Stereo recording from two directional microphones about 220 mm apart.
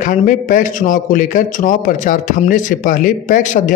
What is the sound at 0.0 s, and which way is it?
A man's voice, 35° left (ahead or behind).